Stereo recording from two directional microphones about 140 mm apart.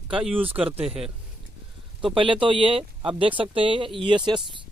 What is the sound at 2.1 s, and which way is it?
Speech, 35° right (ahead or behind).